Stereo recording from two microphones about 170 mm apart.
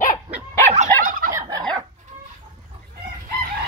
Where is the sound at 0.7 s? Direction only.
50° right (ahead or behind).